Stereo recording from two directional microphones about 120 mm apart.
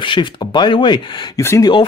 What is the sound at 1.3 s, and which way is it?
Speech, 25° left (ahead or behind).